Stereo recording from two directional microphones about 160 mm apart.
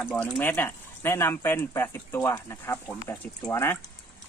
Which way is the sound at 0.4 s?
10° left (ahead or behind).